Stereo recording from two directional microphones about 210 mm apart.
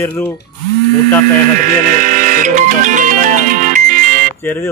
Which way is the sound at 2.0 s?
35° right (ahead or behind).